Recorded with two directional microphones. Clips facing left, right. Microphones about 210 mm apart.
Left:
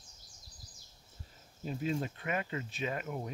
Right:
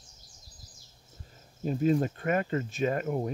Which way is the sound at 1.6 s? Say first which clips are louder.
Right 9 dB; 45° right (ahead or behind).